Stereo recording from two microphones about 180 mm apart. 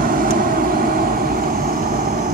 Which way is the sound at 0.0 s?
50° right (ahead or behind).